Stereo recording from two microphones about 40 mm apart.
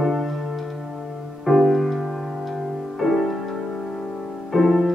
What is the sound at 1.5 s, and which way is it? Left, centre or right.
Music, centre.